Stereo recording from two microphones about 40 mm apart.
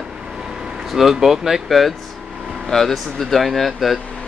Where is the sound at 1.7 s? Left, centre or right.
Centre.